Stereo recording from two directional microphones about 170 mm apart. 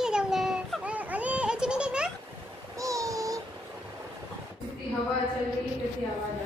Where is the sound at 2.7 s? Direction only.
20° right (ahead or behind).